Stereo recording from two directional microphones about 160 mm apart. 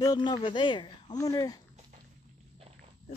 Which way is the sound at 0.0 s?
25° left (ahead or behind).